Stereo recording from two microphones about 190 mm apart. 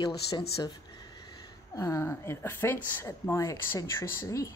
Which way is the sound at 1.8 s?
15° left (ahead or behind).